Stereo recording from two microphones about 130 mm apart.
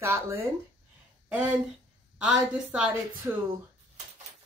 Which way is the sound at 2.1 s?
5° right (ahead or behind).